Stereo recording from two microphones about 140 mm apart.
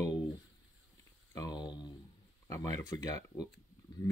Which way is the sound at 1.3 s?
25° left (ahead or behind).